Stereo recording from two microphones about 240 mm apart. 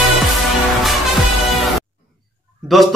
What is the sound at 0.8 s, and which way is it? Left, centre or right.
Music, centre.